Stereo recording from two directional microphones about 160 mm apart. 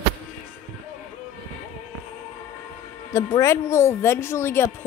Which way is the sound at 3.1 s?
20° left (ahead or behind).